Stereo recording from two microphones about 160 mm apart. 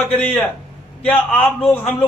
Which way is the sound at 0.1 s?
10° left (ahead or behind).